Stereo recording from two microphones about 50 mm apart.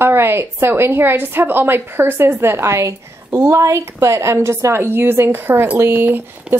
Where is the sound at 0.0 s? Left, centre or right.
Right.